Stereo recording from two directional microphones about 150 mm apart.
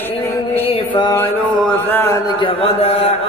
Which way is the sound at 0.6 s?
30° left (ahead or behind).